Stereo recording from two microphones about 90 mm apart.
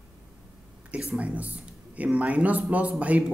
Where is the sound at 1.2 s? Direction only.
15° right (ahead or behind).